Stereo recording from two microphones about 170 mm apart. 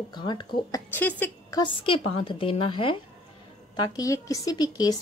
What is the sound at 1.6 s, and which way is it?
A woman's voice, 30° left (ahead or behind).